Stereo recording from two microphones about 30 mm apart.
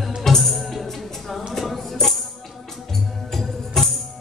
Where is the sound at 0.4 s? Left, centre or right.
Centre.